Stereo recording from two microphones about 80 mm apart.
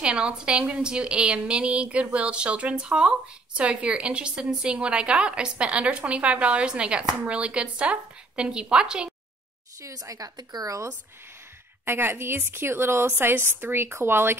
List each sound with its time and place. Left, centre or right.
0.0 s a woman's voice: centre
9.8 s speech: right
11.8 s a woman's voice: right